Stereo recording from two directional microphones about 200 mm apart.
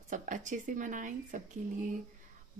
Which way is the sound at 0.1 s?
40° right (ahead or behind).